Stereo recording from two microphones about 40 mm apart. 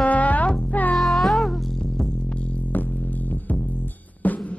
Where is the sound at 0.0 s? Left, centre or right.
Left.